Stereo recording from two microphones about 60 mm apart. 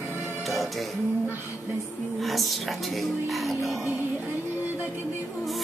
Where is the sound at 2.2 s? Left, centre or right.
Centre.